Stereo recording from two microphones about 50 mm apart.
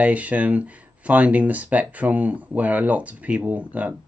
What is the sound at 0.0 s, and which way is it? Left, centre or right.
Speech, right.